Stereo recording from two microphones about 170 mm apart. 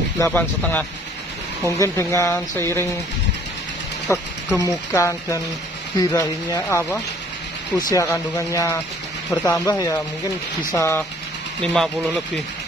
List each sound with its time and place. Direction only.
0.2 s speech: 10° left (ahead or behind)
4.6 s speech: 20° left (ahead or behind)